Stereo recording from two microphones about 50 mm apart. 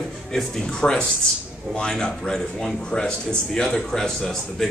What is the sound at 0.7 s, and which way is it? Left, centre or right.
A man's voice, centre.